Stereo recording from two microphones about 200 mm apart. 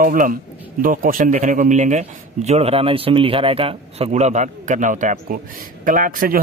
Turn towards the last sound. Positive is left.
turn(degrees=-45)  # may be behind; listen again after turning